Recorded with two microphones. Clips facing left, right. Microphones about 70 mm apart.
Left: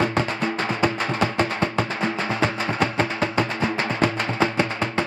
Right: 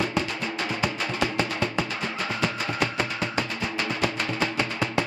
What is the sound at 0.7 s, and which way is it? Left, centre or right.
Music, left.